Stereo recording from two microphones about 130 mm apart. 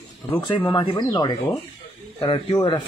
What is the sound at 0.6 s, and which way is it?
Speech, 35° left (ahead or behind).